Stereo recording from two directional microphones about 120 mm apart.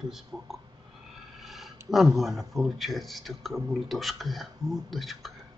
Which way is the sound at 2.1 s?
Centre (ahead or behind).